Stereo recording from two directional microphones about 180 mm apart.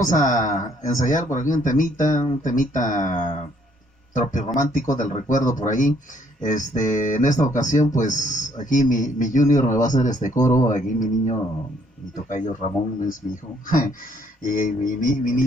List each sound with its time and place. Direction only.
0.0 s speech: 45° left (ahead or behind)
14.4 s speech: 45° left (ahead or behind)